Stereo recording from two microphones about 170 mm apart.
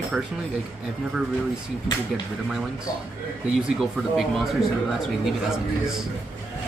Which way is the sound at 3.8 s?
Centre (ahead or behind).